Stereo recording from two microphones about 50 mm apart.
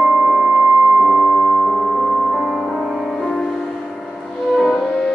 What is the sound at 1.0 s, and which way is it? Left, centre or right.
Music, right.